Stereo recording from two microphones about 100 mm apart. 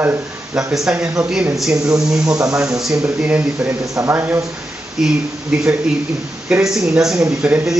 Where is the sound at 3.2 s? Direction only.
20° right (ahead or behind).